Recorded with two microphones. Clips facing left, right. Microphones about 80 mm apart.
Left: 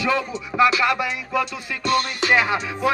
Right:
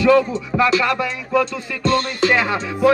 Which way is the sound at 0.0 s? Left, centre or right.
Centre.